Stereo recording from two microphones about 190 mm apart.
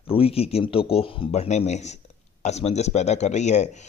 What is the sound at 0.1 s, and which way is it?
Speech, 30° left (ahead or behind).